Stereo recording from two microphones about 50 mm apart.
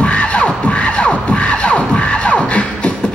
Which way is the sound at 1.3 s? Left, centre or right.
Left.